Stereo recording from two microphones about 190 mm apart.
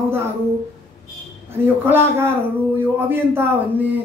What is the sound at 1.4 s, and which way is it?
A man's voice, 10° right (ahead or behind).